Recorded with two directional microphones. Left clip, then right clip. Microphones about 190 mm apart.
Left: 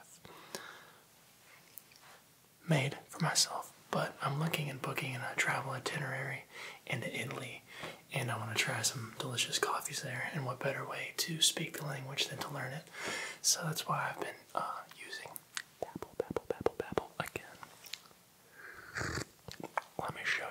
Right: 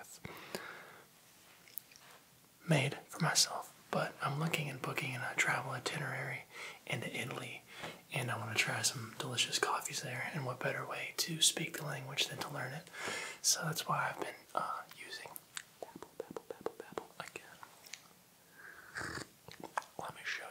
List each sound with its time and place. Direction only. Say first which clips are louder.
0.2 s whispering: right 1 dB; 30° right (ahead or behind)
2.6 s speech: even; 5° right (ahead or behind)
3.9 s speech: left 1 dB; 5° left (ahead or behind)
15.5 s whispering: left 9 dB; 30° left (ahead or behind)
18.6 s biting: left 3 dB; 25° left (ahead or behind)